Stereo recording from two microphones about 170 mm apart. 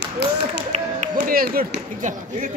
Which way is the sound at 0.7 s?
45° right (ahead or behind).